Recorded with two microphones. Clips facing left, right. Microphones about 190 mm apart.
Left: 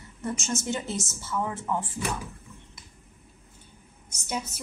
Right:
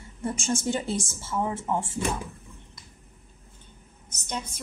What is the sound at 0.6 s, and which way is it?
A woman's voice, 30° right (ahead or behind).